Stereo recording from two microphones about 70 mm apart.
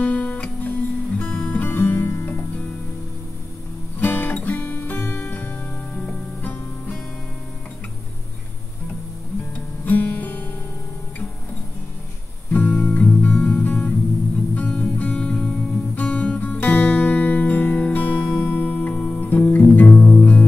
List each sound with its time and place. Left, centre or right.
0.0 s guitar: centre
4.0 s music: left
9.8 s music: left
12.5 s music: centre